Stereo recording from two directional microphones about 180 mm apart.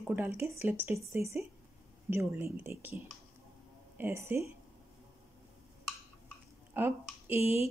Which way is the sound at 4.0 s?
15° right (ahead or behind).